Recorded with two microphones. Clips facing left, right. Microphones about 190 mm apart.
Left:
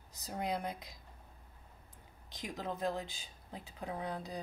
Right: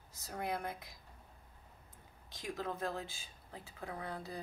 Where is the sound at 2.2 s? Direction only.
15° left (ahead or behind).